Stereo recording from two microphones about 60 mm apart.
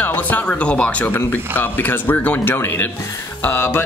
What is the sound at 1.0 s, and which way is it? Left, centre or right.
Speech, left.